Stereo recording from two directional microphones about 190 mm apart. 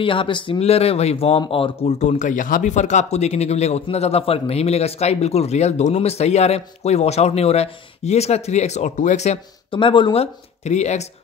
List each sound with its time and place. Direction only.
0.0 s speech: 25° left (ahead or behind)